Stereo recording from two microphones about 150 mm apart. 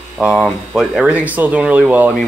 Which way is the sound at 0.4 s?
Centre (ahead or behind).